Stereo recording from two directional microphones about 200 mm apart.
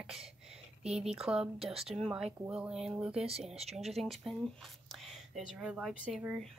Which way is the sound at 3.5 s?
30° right (ahead or behind).